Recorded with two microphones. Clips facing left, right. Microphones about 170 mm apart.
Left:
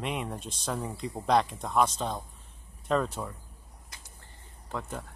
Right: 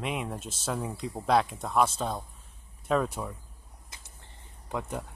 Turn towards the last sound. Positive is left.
turn(degrees=-15)  # may be behind; listen again after turning